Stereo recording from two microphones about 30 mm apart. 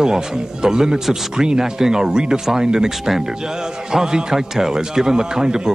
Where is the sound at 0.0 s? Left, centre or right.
Right.